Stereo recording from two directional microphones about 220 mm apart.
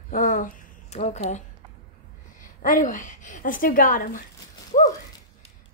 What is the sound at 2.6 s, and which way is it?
A woman's voice, 40° left (ahead or behind).